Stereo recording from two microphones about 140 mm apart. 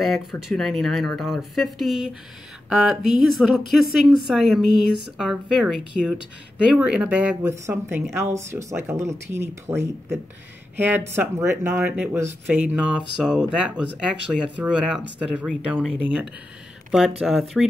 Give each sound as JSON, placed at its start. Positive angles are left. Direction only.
{"t": 0.0, "sound": "speech", "side_deg": 0}